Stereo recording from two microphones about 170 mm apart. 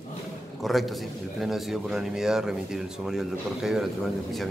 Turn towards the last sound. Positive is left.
turn(degrees=0)  # may be behind; listen again after turning